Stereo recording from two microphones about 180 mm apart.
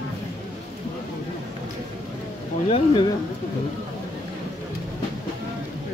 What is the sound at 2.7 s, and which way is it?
Speech, 25° left (ahead or behind).